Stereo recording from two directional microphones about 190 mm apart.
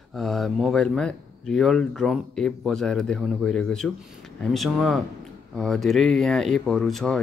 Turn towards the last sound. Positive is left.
turn(degrees=0)  # may be behind; listen again after turning